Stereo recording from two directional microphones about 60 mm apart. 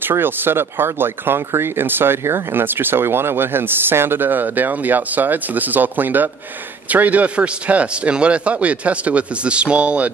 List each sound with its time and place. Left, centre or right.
0.1 s a man's voice: right